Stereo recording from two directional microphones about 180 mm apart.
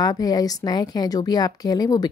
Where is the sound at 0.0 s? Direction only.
20° left (ahead or behind).